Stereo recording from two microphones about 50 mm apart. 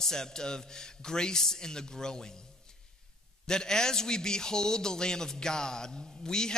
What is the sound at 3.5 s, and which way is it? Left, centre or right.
A man's voice, centre.